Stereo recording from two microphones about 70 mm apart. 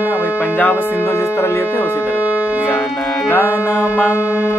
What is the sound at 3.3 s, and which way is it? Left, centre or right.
Music, left.